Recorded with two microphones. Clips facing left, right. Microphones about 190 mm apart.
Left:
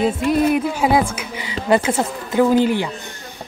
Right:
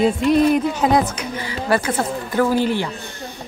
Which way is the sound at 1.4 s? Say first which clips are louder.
Left 3 dB; 20° left (ahead or behind).